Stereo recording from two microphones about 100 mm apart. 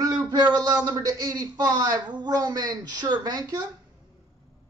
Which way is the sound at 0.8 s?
40° right (ahead or behind).